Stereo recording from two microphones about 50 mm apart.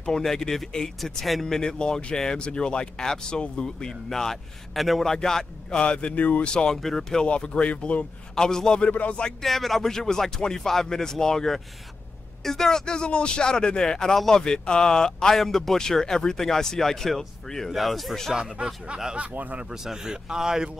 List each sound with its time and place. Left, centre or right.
0.0 s speech: centre
5.1 s speech: centre; by 6.5 s left
6.5 s speech: centre
8.4 s speech: centre
8.8 s speech: left
9.4 s speech: centre
18.3 s a man's voice: centre
19.1 s speech: right
19.7 s a man's voice: centre